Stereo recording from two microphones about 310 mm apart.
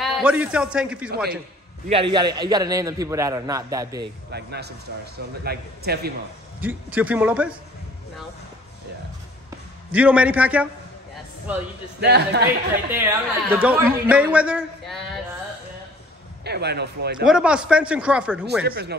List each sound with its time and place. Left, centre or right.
0.0 s a man's voice: centre
1.9 s a man's voice: centre
4.0 s a man's voice: right
6.6 s a woman's voice: centre
9.9 s a woman's voice: centre
12.0 s a man's voice: right
12.9 s a woman's voice: centre
16.4 s a man's voice: right
17.2 s a woman's voice: centre
18.7 s a man's voice: right